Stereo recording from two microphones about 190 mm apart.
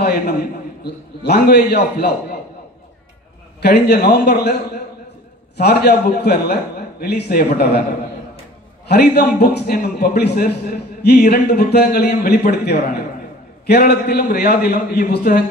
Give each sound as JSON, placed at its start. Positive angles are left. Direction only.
{"t": 0.0, "sound": "speech", "side_deg": 55}
{"t": 3.6, "sound": "speech", "side_deg": 60}
{"t": 8.8, "sound": "speech", "side_deg": 60}